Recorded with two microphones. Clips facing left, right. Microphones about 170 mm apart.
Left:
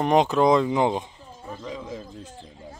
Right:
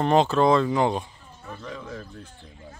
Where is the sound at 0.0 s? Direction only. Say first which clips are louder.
Even; 15° left (ahead or behind).